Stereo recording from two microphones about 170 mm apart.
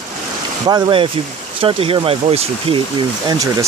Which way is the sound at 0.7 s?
25° right (ahead or behind).